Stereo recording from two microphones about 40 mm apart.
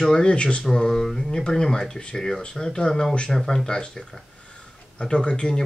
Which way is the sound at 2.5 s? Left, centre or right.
Centre.